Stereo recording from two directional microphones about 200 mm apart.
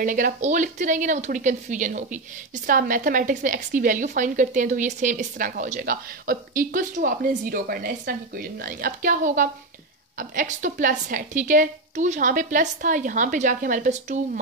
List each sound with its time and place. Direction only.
0.0 s a woman's voice: 40° right (ahead or behind)